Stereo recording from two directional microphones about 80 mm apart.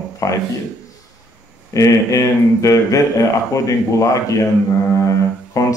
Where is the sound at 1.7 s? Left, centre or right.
Left.